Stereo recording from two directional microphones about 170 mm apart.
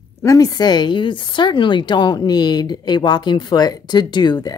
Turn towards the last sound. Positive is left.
turn(degrees=25)  # may be behind; listen again after turning